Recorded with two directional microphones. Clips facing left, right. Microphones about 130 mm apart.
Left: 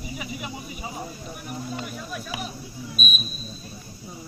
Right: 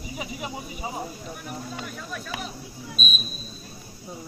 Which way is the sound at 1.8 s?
10° left (ahead or behind).